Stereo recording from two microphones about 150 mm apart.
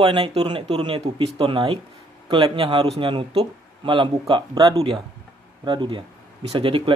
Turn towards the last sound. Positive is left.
turn(degrees=-35)  # may be behind; listen again after turning